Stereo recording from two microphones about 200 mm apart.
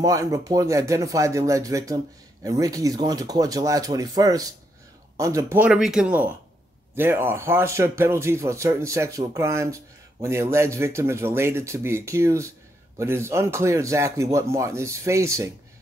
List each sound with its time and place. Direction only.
0.0 s speech: 15° right (ahead or behind)